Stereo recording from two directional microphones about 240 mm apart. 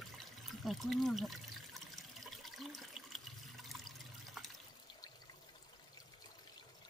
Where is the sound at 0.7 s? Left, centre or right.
Centre.